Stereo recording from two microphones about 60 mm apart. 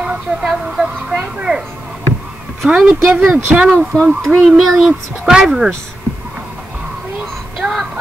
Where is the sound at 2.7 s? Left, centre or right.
Centre.